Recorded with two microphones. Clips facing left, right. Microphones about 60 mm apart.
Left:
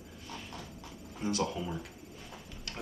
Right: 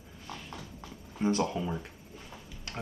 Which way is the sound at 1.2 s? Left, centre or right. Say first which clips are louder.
Right 4 dB; right.